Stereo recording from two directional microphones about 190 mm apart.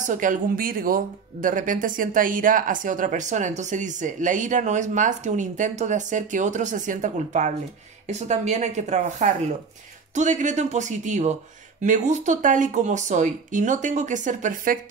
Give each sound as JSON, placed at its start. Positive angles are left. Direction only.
{"t": 0.0, "sound": "speech", "side_deg": -45}